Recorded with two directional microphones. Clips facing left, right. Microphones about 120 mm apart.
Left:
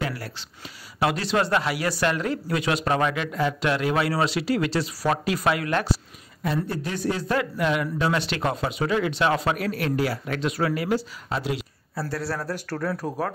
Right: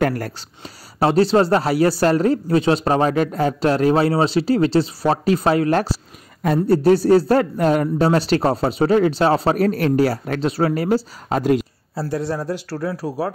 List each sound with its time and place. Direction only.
0.0 s speech: 50° right (ahead or behind)
0.9 s a man's voice: 35° right (ahead or behind)
12.0 s a man's voice: 20° right (ahead or behind)